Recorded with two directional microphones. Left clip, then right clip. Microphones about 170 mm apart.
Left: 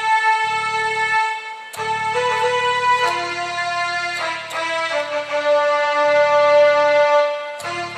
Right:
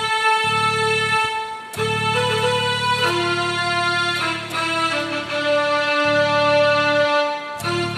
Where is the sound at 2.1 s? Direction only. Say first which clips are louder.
Left 3 dB; 50° right (ahead or behind).